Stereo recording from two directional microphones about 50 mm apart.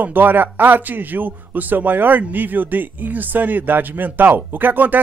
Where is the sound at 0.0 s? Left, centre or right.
Right.